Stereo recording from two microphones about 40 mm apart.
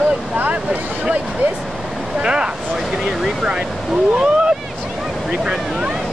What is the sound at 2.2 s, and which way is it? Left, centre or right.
Speech, centre.